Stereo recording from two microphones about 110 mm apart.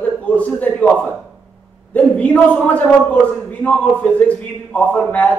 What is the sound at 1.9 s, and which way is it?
A man's voice, 15° left (ahead or behind).